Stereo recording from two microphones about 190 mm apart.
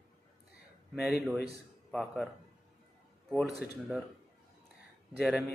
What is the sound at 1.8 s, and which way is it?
Speech, centre (ahead or behind).